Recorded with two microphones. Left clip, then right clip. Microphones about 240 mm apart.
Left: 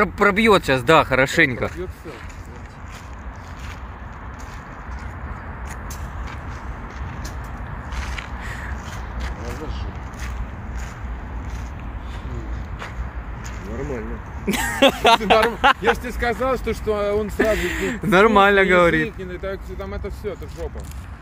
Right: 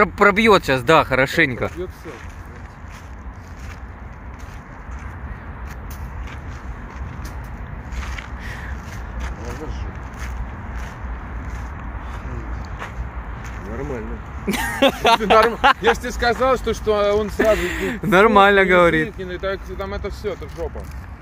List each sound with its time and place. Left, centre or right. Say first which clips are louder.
0.0 s speech: right 3 dB; centre
8.0 s a sound: even; centre
9.4 s vehicle: right 1 dB; centre
13.7 s a sound: even; centre
16.0 s speech: right 4 dB; right
16.5 s speech: right 4 dB; centre
19.0 s speech: right 3 dB; right